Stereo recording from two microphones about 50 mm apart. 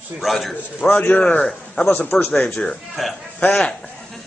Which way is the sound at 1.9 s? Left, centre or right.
Left.